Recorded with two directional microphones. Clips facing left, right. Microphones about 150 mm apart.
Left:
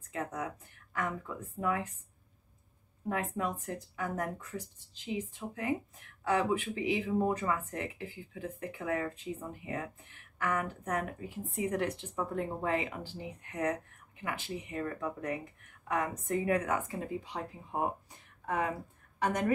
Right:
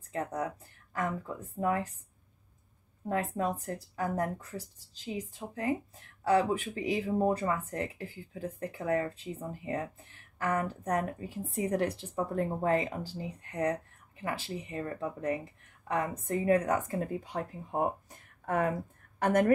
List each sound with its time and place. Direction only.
0.1 s speech: 35° right (ahead or behind)
1.6 s speech: 35° right (ahead or behind)
3.1 s speech: 35° right (ahead or behind)
19.1 s a sound: 50° right (ahead or behind)